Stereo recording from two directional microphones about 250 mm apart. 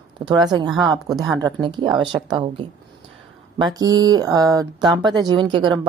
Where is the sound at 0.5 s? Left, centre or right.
Centre.